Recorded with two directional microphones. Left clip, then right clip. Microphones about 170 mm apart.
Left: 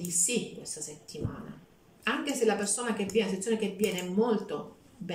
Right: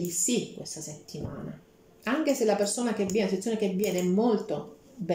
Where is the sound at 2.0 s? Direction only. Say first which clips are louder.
Right 2 dB; 25° right (ahead or behind).